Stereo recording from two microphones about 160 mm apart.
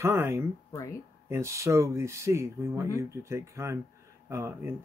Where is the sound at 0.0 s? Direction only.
15° right (ahead or behind).